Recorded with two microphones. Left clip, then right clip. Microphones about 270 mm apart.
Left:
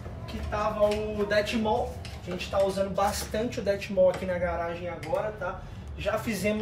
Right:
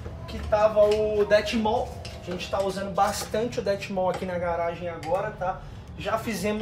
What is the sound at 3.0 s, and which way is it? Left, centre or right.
Speech, centre.